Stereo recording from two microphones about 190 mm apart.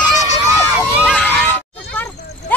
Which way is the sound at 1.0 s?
5° left (ahead or behind).